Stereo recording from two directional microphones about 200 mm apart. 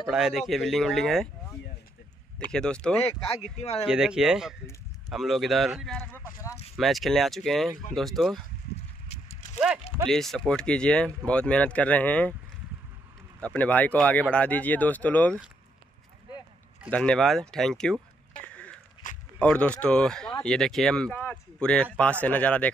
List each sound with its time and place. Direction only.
0.0 s speech: centre (ahead or behind)
2.5 s speech: 5° left (ahead or behind)
3.5 s speech: 30° left (ahead or behind)
3.8 s speech: 5° right (ahead or behind)
10.0 s speech: centre (ahead or behind)
13.4 s speech: 5° left (ahead or behind)
16.9 s speech: 5° left (ahead or behind)
18.3 s a sound: 5° left (ahead or behind)
19.0 s a sound: 40° left (ahead or behind)
19.4 s speech: 5° left (ahead or behind)